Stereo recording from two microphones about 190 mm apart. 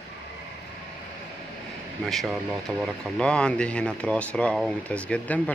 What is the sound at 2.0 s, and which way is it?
Speech, centre (ahead or behind).